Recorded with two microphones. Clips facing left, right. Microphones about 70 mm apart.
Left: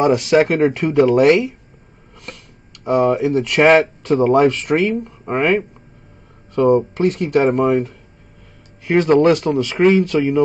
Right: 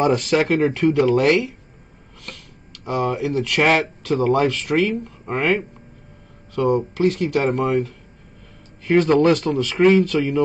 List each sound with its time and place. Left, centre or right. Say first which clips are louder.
0.0 s speech: left 4 dB; centre
2.8 s speech: left 7 dB; left